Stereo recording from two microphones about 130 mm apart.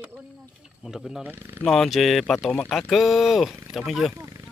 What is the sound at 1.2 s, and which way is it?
Speech, 15° right (ahead or behind).